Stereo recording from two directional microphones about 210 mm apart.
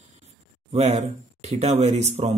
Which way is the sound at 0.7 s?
30° right (ahead or behind).